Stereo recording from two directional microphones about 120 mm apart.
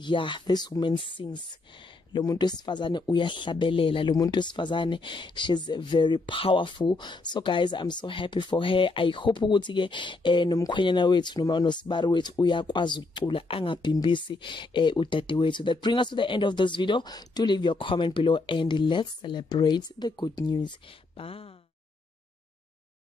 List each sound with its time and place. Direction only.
0.0 s speech: 40° left (ahead or behind)
4.1 s speech: 35° left (ahead or behind)
21.2 s speech: 50° left (ahead or behind)